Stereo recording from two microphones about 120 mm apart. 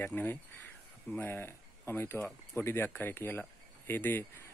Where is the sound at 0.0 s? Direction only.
15° left (ahead or behind).